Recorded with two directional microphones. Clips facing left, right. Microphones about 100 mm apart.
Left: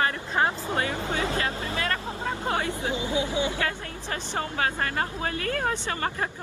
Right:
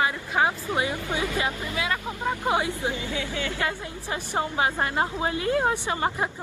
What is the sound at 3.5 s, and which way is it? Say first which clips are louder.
A woman's voice: right 1 dB; 15° right (ahead or behind).